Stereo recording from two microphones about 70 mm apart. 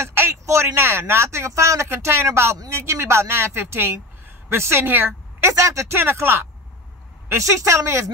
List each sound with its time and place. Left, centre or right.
0.0 s a man's voice: right
5.5 s speech: right
5.9 s speech: right
7.2 s speech: right